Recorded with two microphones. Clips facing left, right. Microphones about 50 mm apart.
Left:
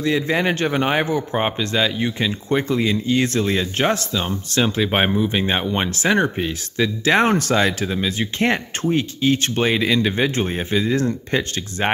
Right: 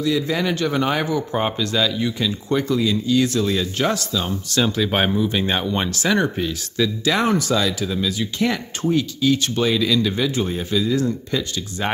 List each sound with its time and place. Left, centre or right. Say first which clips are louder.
0.0 s speech: left 1 dB; left